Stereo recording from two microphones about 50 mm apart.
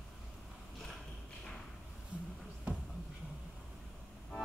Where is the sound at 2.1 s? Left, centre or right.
Right.